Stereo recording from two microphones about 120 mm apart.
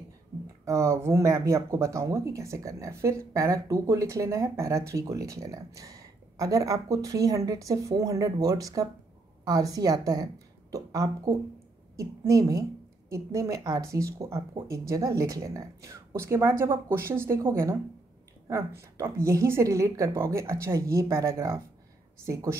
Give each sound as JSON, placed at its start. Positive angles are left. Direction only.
{"t": 0.7, "sound": "a woman's voice", "side_deg": -25}